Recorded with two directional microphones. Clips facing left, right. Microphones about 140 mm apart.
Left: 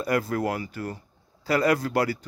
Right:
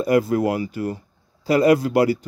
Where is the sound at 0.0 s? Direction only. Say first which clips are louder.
Right 7 dB; 20° right (ahead or behind).